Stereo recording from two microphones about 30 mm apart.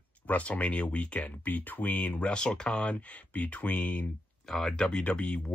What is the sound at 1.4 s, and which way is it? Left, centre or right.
Speech, left.